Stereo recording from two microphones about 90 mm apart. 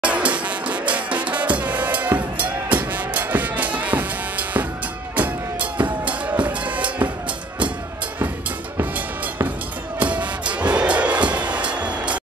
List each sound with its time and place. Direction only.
0.0 s music: 15° right (ahead or behind)
8.7 s music: 25° right (ahead or behind)